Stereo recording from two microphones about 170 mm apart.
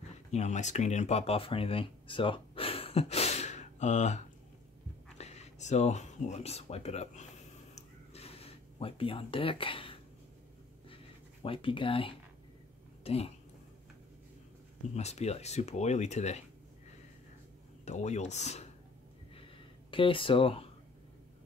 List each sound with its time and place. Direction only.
0.3 s speech: 45° left (ahead or behind)
7.7 s a sound: 35° left (ahead or behind)
11.4 s speech: 30° left (ahead or behind)
15.0 s speech: 40° left (ahead or behind)
17.8 s speech: 40° left (ahead or behind)
19.9 s speech: 30° left (ahead or behind)